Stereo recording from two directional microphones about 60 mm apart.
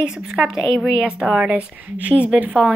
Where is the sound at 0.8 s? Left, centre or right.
Centre.